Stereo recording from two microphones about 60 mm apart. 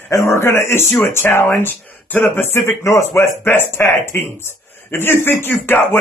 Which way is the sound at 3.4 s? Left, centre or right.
Left.